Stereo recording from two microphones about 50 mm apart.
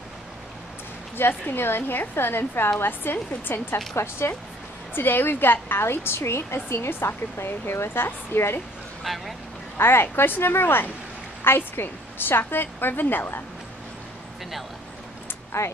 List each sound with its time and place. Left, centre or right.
1.1 s a woman's voice: left
3.9 s a woman's voice: left
4.9 s a woman's voice: left
9.0 s speech: centre
9.8 s a woman's voice: left
15.5 s a woman's voice: left